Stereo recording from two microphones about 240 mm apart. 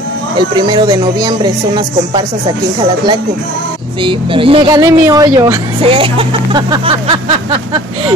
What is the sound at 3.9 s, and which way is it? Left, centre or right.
Speech, right.